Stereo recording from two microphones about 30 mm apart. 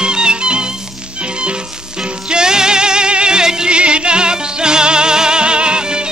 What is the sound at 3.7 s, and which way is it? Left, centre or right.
Music, right.